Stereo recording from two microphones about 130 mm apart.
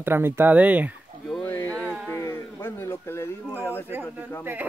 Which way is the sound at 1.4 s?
15° left (ahead or behind).